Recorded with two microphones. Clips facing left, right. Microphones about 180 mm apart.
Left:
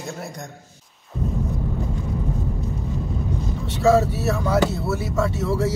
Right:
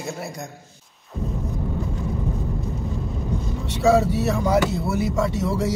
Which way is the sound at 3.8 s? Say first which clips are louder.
Even; 15° right (ahead or behind).